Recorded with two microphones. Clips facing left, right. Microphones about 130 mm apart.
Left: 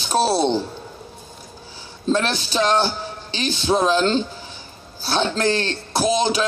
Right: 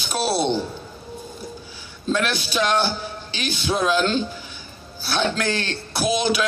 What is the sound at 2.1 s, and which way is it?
A man's voice, 35° left (ahead or behind).